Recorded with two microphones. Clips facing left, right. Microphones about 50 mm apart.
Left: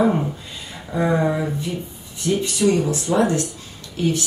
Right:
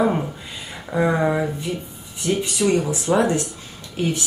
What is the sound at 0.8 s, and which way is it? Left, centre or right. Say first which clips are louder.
Speech: even; centre.